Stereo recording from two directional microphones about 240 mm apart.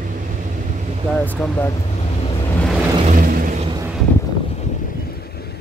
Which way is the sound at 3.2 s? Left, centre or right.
Right.